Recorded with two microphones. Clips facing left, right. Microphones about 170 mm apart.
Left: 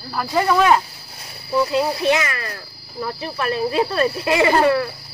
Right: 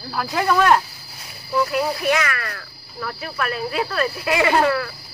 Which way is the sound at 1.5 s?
25° left (ahead or behind).